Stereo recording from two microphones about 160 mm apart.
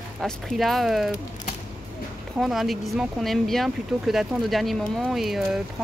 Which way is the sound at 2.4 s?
Centre (ahead or behind).